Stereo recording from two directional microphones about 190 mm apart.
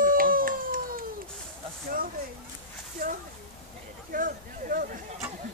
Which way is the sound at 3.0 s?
50° right (ahead or behind).